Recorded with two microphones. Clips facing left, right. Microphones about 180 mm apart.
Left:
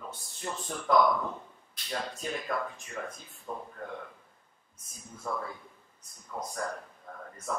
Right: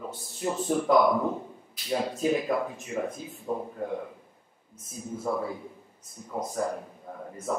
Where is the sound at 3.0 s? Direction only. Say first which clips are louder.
Right 8 dB; 15° right (ahead or behind).